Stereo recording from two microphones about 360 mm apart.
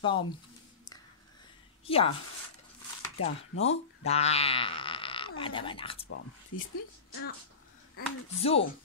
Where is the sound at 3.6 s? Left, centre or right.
Centre.